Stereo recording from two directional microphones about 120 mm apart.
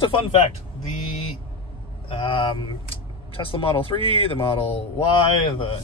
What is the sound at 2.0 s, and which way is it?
Speech, 50° left (ahead or behind).